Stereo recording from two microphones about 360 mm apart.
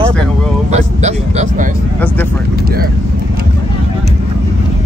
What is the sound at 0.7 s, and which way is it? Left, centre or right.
Speech, centre.